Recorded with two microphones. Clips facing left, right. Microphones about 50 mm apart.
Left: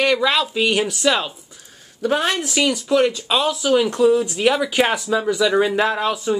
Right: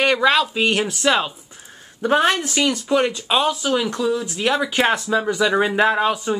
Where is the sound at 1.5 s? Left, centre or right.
Right.